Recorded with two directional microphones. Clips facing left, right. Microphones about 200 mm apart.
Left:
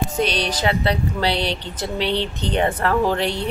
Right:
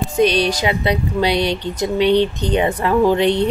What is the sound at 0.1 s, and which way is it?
Speech, 10° right (ahead or behind).